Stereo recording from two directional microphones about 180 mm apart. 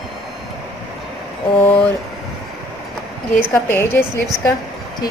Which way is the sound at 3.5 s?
15° left (ahead or behind).